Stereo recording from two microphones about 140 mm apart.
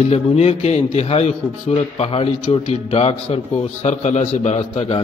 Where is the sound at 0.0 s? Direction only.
50° left (ahead or behind).